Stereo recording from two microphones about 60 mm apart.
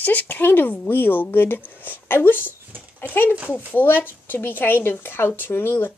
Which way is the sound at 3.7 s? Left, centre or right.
Left.